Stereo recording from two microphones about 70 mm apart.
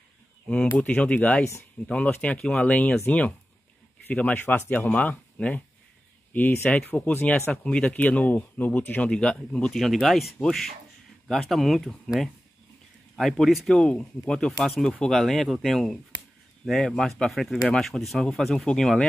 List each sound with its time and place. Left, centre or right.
0.8 s speech: centre
9.8 s speech: centre
13.7 s speech: centre